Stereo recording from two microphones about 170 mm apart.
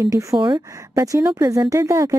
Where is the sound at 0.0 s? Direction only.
20° right (ahead or behind).